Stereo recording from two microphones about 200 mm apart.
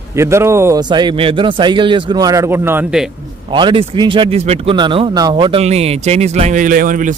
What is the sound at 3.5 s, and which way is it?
A man's voice, 25° right (ahead or behind).